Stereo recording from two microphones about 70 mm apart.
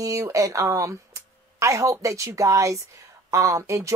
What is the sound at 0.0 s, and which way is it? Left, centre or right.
Speech, right.